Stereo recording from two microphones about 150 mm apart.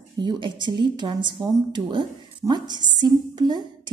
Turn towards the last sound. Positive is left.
turn(degrees=-30)  # may be behind; listen again after turning